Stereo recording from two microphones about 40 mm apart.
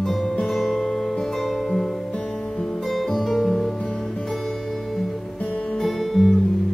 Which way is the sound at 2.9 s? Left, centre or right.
Centre.